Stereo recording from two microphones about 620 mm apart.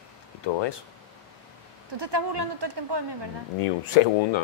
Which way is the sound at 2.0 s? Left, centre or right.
Right.